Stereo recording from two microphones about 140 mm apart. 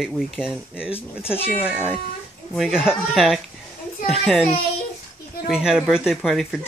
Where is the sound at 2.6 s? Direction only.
5° right (ahead or behind).